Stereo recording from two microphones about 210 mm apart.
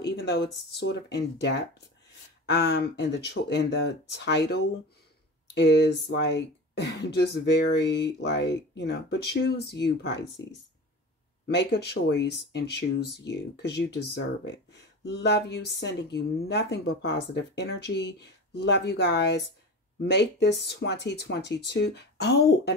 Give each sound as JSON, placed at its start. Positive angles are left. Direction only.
{"t": 0.1, "sound": "a sound", "side_deg": 55}
{"t": 0.7, "sound": "speech", "side_deg": 55}
{"t": 11.4, "sound": "speech", "side_deg": 50}